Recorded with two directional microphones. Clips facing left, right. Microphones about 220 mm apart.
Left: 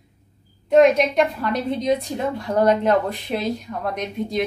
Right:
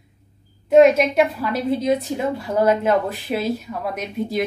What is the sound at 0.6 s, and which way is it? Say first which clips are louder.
A woman's voice: right 2 dB; 5° right (ahead or behind).